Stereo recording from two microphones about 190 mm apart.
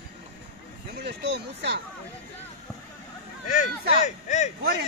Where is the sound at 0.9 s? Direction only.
60° right (ahead or behind).